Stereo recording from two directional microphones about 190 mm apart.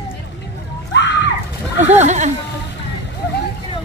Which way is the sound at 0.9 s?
70° left (ahead or behind).